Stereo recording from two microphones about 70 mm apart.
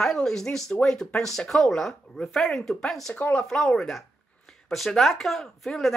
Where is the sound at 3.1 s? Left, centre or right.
Left.